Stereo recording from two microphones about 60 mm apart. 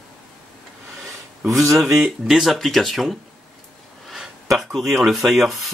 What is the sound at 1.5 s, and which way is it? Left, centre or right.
Speech, right.